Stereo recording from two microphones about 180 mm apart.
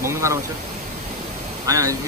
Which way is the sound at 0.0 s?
15° right (ahead or behind).